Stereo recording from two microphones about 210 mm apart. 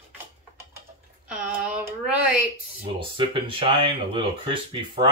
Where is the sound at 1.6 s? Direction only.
5° right (ahead or behind).